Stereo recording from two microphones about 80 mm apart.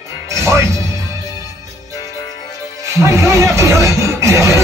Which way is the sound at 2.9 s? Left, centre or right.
Right.